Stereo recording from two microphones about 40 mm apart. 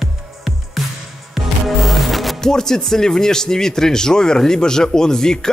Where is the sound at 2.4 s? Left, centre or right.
Centre.